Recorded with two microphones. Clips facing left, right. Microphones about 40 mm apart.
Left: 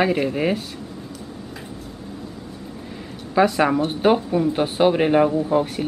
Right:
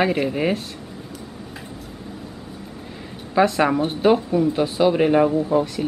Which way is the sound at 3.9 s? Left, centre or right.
Centre.